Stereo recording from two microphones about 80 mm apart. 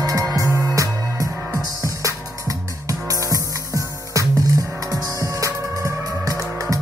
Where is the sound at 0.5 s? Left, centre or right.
Left.